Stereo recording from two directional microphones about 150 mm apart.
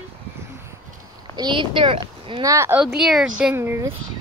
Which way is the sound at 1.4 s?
30° right (ahead or behind).